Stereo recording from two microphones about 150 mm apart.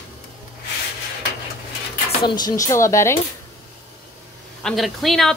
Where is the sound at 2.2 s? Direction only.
25° left (ahead or behind).